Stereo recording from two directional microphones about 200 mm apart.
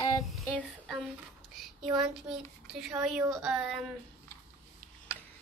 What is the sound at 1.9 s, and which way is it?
A woman's voice, centre (ahead or behind).